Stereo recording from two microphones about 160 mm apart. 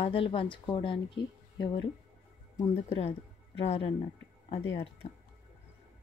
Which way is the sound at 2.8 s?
40° left (ahead or behind).